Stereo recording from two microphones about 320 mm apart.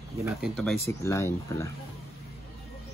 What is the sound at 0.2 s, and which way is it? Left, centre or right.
Speech, centre.